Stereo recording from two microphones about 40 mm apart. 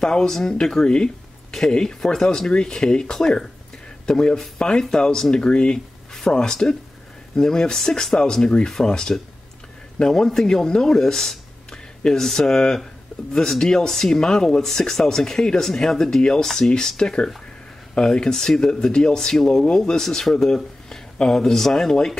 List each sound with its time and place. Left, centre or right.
0.0 s speech: centre
11.7 s a sound: left
12.2 s speech: centre